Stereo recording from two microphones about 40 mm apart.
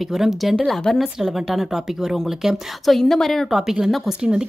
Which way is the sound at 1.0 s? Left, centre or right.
Centre.